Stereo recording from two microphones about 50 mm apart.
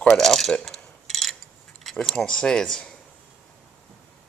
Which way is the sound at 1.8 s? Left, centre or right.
Centre.